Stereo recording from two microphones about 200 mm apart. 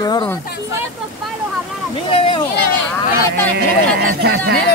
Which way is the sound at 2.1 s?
25° left (ahead or behind).